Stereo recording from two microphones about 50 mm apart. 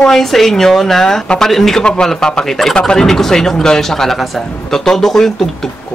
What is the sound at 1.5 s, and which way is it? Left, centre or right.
Speech, centre.